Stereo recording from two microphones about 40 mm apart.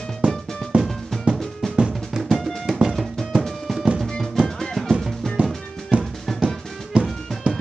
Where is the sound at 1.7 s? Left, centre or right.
Right.